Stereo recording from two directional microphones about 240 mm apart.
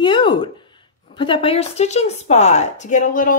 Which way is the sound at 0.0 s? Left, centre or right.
Centre.